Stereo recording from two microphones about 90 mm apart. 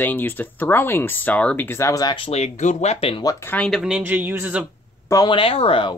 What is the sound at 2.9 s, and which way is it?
Speech, 85° left.